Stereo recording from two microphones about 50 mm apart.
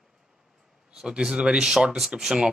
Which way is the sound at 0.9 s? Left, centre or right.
Centre.